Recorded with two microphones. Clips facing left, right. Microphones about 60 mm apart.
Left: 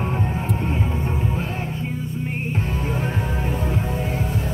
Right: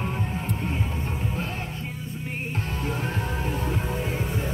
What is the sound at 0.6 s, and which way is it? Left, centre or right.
Music, centre.